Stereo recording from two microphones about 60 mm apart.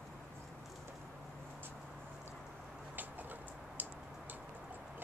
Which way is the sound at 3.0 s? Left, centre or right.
Right.